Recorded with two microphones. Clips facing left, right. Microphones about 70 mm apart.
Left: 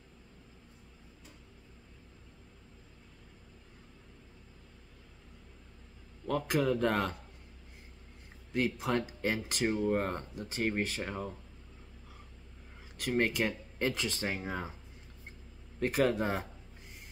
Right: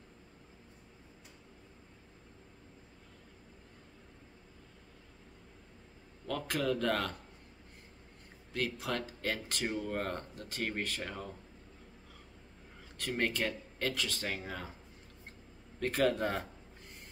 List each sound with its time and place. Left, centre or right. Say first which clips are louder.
6.2 s speech: left 4 dB; centre
8.5 s speech: left 5 dB; left
12.9 s speech: left 4 dB; centre
15.8 s speech: left 1 dB; centre